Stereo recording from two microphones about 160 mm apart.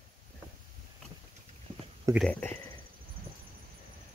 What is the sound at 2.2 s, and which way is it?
Speech, 10° left (ahead or behind).